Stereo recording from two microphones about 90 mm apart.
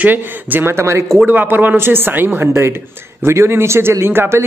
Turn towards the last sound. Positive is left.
turn(degrees=-25)  # may be behind; listen again after turning